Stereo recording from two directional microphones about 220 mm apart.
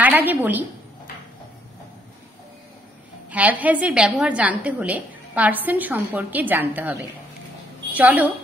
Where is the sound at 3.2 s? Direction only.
5° right (ahead or behind).